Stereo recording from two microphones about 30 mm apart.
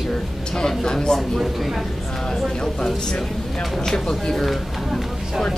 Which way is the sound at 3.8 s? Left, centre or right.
Centre.